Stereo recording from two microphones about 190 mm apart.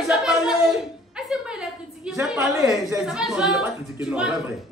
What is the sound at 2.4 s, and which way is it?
Speech, 15° right (ahead or behind).